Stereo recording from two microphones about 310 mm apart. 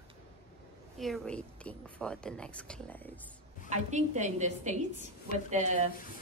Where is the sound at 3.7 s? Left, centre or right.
Right.